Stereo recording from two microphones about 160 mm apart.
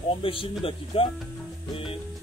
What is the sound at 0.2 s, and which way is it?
Speech, 35° left (ahead or behind).